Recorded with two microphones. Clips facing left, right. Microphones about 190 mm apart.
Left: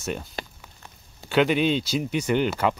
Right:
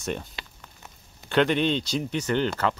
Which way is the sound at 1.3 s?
5° left (ahead or behind).